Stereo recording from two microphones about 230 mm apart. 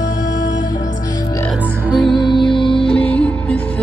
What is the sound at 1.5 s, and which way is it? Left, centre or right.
Music, centre.